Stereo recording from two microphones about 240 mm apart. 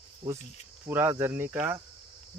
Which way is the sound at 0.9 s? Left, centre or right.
Centre.